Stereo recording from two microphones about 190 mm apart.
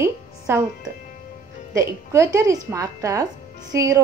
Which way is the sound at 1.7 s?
15° right (ahead or behind).